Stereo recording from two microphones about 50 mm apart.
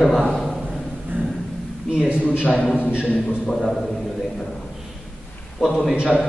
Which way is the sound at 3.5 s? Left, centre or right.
Centre.